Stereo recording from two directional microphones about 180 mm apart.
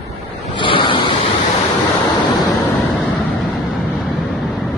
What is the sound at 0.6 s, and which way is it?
Vehicle, 30° left (ahead or behind).